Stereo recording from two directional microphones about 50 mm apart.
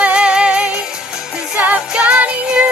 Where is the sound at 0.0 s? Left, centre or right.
Right.